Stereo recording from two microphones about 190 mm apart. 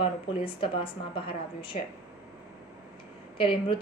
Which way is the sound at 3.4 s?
30° left (ahead or behind).